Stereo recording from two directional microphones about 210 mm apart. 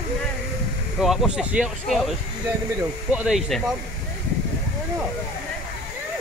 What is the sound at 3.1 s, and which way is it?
Speech, 5° right (ahead or behind).